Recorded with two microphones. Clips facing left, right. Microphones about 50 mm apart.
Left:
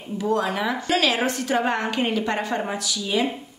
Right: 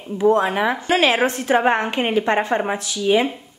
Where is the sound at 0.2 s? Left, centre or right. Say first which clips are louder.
Right 7 dB; right.